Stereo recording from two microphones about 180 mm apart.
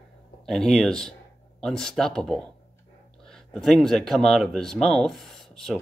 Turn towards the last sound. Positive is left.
turn(degrees=0)  # may be behind; listen again after turning